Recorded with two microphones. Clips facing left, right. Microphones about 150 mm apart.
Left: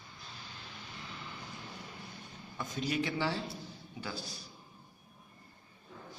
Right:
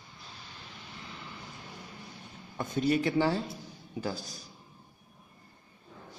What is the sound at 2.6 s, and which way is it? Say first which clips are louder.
A man's voice: right 7 dB; 50° right (ahead or behind).